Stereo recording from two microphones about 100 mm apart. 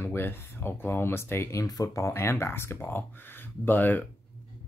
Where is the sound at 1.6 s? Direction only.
40° left (ahead or behind); by 4.0 s 20° left (ahead or behind).